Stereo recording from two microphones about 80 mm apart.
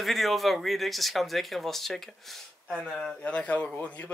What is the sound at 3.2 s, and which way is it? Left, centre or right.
Speech, centre.